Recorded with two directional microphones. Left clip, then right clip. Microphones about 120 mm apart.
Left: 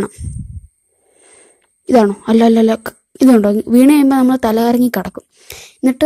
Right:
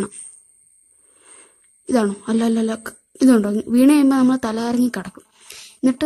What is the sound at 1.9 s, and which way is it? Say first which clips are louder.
A woman's voice: left 9 dB; 40° left (ahead or behind).